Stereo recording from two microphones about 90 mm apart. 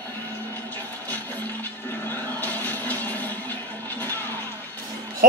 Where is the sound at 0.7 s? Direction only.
20° left (ahead or behind).